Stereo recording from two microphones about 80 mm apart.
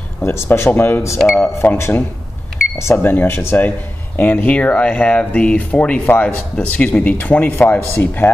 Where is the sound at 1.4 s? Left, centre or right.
Left.